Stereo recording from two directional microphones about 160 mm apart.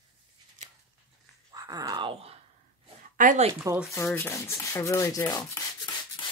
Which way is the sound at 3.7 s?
20° right (ahead or behind).